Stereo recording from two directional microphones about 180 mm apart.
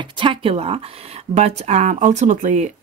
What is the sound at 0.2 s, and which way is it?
Speech, 30° right (ahead or behind).